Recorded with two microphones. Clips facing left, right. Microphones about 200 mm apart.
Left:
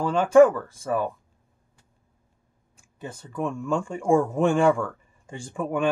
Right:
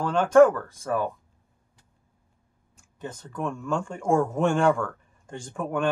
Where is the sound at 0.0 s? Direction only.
5° left (ahead or behind).